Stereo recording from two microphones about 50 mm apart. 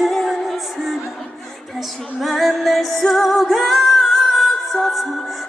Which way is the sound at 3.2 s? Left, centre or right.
Centre.